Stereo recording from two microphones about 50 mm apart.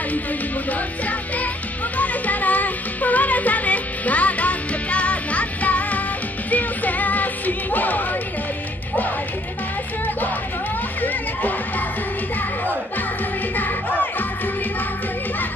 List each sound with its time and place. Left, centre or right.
0.7 s music: left
11.0 s music: left
13.6 s music: left